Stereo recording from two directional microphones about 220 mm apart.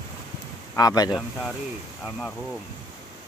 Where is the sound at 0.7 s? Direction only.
15° left (ahead or behind).